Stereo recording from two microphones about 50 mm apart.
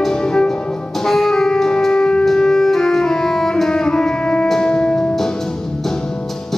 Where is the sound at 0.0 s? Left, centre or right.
Centre.